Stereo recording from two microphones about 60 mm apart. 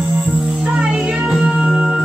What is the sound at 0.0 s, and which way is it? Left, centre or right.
Music, centre.